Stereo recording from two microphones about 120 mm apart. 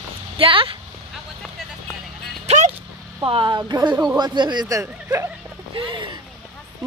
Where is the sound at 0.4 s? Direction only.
45° right (ahead or behind).